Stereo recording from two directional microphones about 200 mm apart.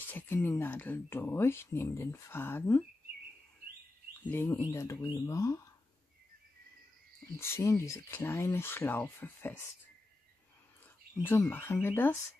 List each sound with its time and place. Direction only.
0.1 s speech: 10° left (ahead or behind)
4.3 s speech: 10° left (ahead or behind)
7.3 s speech: 15° left (ahead or behind)
11.2 s speech: 10° left (ahead or behind)